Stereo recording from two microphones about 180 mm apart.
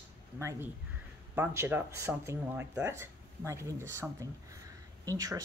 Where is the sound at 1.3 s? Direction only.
10° right (ahead or behind).